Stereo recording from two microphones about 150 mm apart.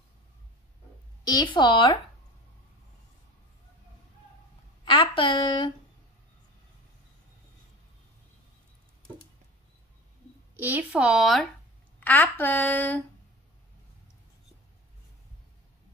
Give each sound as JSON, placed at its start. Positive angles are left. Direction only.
{"t": 1.2, "sound": "a woman's voice", "side_deg": 30}
{"t": 4.8, "sound": "a sound", "side_deg": 35}
{"t": 10.5, "sound": "speech", "side_deg": -10}
{"t": 12.0, "sound": "speech", "side_deg": 10}